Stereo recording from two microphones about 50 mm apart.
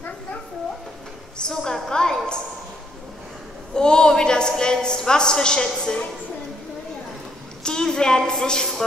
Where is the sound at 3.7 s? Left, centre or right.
Centre.